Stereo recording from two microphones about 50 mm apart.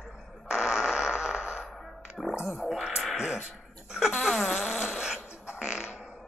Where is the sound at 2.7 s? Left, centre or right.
Centre.